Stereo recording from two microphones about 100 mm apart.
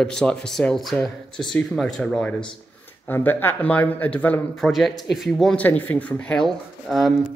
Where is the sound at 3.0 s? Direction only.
20° left (ahead or behind).